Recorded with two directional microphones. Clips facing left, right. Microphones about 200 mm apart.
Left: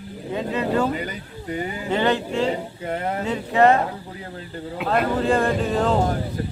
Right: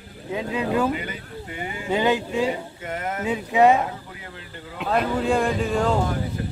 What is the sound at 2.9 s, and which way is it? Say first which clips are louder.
Speech: left 3 dB; 35° left (ahead or behind).